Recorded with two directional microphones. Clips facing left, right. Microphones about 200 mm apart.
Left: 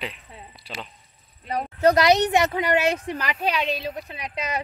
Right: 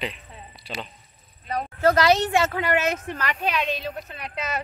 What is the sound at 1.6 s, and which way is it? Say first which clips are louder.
Speech: left 1 dB; 15° left (ahead or behind).